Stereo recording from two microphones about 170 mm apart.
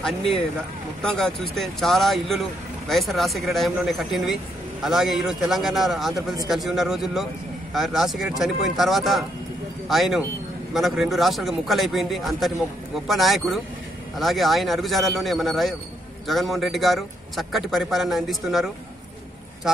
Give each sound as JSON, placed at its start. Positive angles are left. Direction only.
{"t": 0.0, "sound": "a man's voice", "side_deg": 0}